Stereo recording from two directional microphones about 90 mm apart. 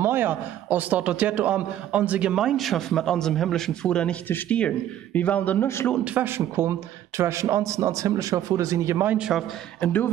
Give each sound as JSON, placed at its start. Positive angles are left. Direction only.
{"t": 0.0, "sound": "a man's voice", "side_deg": -25}
{"t": 6.0, "sound": "a man's voice", "side_deg": -20}
{"t": 9.0, "sound": "a man's voice", "side_deg": -15}
{"t": 9.8, "sound": "a man's voice", "side_deg": 20}